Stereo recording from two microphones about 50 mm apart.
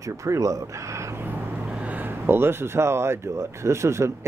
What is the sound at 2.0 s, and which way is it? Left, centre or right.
Speech, right.